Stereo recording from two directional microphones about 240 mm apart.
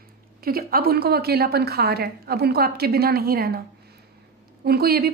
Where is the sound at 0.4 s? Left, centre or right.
Right.